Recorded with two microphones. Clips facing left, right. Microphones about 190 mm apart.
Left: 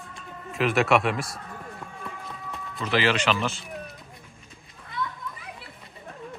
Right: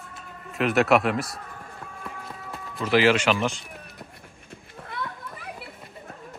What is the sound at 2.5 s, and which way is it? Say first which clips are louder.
Speech: right 4 dB; 5° right (ahead or behind).